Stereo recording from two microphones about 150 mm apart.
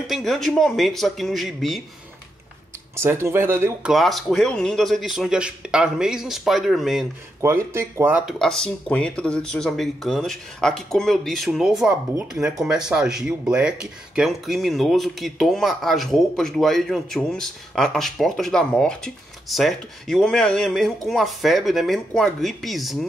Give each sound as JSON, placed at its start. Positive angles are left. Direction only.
{"t": 0.0, "sound": "speech", "side_deg": 0}
{"t": 3.0, "sound": "speech", "side_deg": -15}
{"t": 3.8, "sound": "speech", "side_deg": 0}
{"t": 7.4, "sound": "speech", "side_deg": -20}
{"t": 8.3, "sound": "speech", "side_deg": 5}